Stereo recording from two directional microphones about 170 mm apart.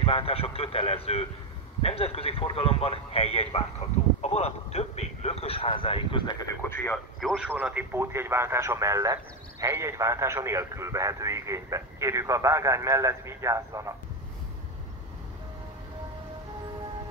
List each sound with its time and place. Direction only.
0.0 s a man's voice: 35° left (ahead or behind)
6.7 s speech: 10° left (ahead or behind)
7.2 s speech: centre (ahead or behind); by 13.9 s 15° right (ahead or behind)